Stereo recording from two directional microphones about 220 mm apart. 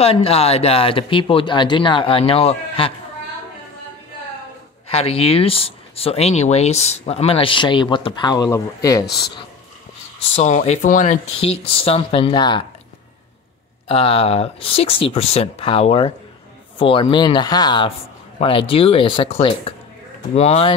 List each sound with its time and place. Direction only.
0.0 s speech: 25° left (ahead or behind)
4.8 s speech: 25° left (ahead or behind)
9.0 s speech: 45° left (ahead or behind)
10.3 s speech: 30° left (ahead or behind)
13.8 s speech: 25° left (ahead or behind)